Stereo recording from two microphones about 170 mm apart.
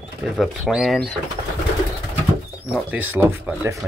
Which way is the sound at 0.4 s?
Centre (ahead or behind).